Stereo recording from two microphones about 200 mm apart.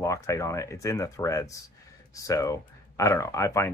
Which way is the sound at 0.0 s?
15° left (ahead or behind).